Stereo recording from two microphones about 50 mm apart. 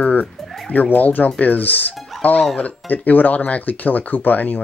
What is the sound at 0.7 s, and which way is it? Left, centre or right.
Speech, left.